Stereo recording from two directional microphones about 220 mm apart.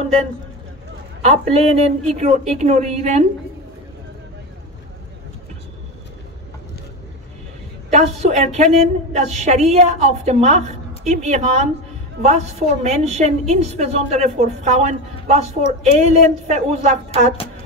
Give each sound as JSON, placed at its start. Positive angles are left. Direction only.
{"t": 1.2, "sound": "a woman's voice", "side_deg": -30}
{"t": 7.9, "sound": "a woman's voice", "side_deg": -30}